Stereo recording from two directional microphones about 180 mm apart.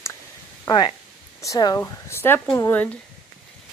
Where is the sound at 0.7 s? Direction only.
25° left (ahead or behind).